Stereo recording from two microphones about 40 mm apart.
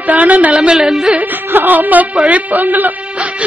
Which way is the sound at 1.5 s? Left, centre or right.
Right.